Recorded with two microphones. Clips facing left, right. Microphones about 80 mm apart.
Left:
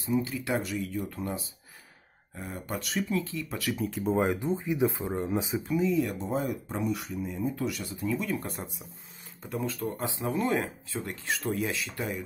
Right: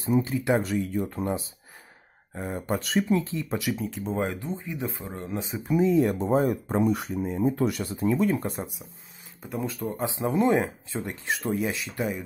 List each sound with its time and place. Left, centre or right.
0.2 s speech: right
3.7 s speech: centre
4.6 s speech: centre
5.8 s speech: right
8.4 s speech: right